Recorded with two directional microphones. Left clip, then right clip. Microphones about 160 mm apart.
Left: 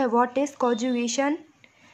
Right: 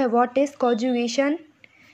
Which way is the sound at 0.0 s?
5° right (ahead or behind).